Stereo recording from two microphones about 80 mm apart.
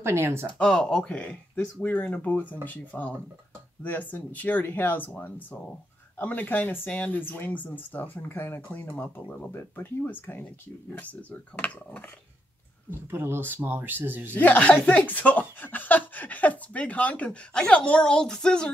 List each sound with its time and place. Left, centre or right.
0.0 s speech: right
0.6 s speech: centre
13.1 s speech: right
14.3 s speech: left